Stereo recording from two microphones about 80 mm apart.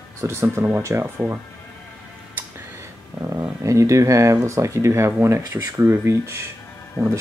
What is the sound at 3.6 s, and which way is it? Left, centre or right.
Speech, right.